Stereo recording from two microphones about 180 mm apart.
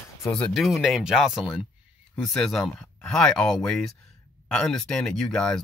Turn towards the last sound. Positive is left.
turn(degrees=5)  # may be behind; listen again after turning